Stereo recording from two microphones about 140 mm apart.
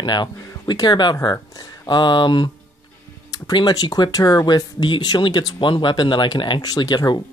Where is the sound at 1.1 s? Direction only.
20° left (ahead or behind).